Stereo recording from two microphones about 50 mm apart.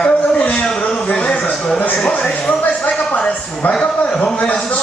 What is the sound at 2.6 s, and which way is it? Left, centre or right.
Speech, left.